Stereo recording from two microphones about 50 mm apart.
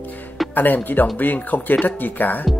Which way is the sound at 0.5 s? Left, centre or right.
Left.